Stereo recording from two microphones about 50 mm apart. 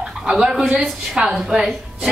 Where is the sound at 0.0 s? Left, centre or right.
Centre.